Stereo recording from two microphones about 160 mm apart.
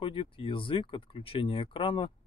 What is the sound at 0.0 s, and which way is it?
Speech, 35° left (ahead or behind).